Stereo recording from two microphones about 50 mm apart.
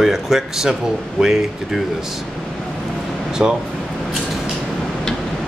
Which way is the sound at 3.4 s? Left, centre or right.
Right.